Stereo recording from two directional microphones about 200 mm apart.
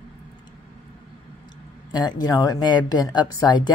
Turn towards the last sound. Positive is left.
turn(degrees=20)  # may be behind; listen again after turning